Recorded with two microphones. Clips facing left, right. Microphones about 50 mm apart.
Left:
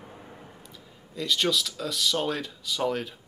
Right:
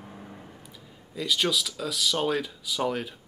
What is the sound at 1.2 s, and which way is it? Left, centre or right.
Speech, centre.